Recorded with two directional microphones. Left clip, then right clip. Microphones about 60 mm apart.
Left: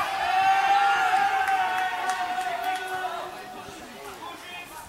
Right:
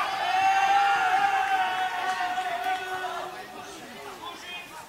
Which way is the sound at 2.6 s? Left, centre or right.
Right.